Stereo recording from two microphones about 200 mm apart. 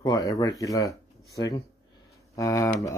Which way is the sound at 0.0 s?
20° left (ahead or behind).